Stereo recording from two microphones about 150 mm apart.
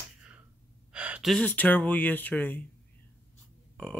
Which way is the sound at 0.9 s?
10° right (ahead or behind).